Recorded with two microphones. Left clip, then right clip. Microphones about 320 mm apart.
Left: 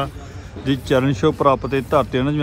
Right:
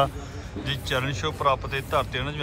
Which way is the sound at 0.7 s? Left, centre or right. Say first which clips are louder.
Left 9 dB; centre.